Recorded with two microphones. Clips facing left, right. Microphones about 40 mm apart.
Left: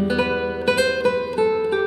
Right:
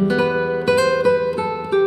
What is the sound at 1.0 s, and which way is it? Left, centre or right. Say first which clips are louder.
Music: right 2 dB; centre.